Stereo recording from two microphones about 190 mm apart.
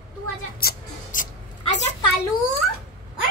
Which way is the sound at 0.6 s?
50° left (ahead or behind).